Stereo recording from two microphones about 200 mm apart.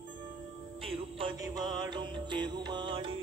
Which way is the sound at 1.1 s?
20° right (ahead or behind).